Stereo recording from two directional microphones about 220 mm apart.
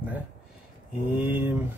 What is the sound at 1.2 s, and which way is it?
Speech, 10° right (ahead or behind).